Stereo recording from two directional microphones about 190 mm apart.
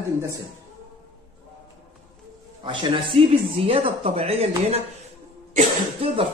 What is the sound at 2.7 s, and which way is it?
Speech, 30° right (ahead or behind).